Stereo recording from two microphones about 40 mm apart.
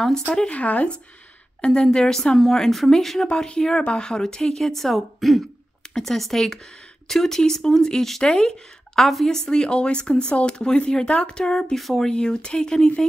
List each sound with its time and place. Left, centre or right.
0.5 s speech: left
1.6 s speech: left
3.3 s speech: left
11.7 s speech: centre
12.1 s speech: centre